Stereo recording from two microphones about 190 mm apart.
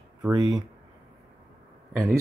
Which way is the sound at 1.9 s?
Centre (ahead or behind).